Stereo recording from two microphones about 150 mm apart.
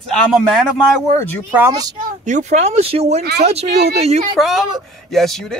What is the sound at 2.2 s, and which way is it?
Speech, 55° right (ahead or behind).